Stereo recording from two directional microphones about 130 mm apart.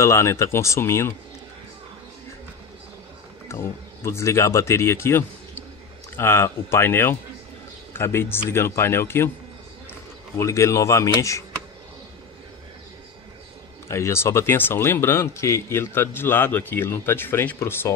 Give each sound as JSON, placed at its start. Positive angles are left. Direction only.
{"t": 0.0, "sound": "speech", "side_deg": 20}
{"t": 3.4, "sound": "speech", "side_deg": 20}
{"t": 10.3, "sound": "speech", "side_deg": 20}
{"t": 13.8, "sound": "speech", "side_deg": 20}